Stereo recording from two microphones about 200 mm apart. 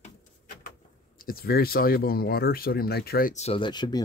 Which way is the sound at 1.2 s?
50° left (ahead or behind).